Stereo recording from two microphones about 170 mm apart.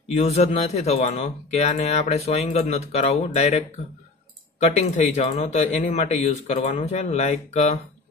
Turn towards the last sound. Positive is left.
turn(degrees=40)  # may be behind; listen again after turning